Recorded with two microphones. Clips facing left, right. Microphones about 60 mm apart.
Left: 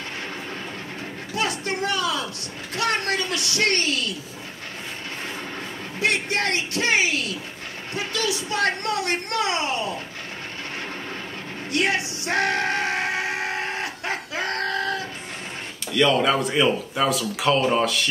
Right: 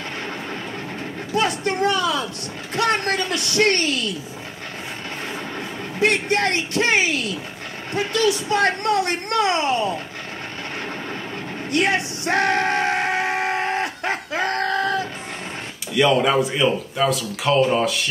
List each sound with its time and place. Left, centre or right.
1.3 s a woman's voice: right
5.9 s a woman's voice: right
11.7 s yell: right
15.9 s speech: centre